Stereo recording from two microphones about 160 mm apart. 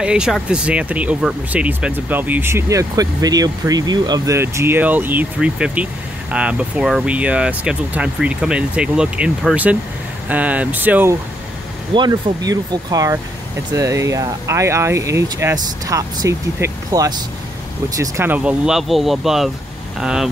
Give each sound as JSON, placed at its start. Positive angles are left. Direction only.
{"t": 0.0, "sound": "speech", "side_deg": -5}
{"t": 11.9, "sound": "speech", "side_deg": -25}